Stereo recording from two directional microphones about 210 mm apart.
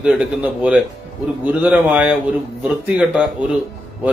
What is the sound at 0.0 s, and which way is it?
A man's voice, 5° right (ahead or behind).